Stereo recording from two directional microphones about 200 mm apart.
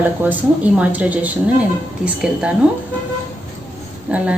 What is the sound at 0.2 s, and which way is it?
A woman's voice, 10° right (ahead or behind).